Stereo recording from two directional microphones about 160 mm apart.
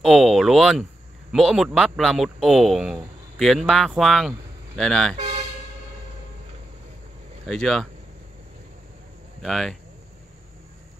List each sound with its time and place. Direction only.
0.0 s a man's voice: centre (ahead or behind)
5.1 s speech: 40° right (ahead or behind)
7.4 s a man's voice: 5° left (ahead or behind)
9.4 s a man's voice: centre (ahead or behind)